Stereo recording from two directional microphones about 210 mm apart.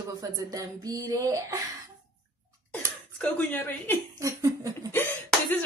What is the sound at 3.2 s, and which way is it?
Speech, 10° left (ahead or behind).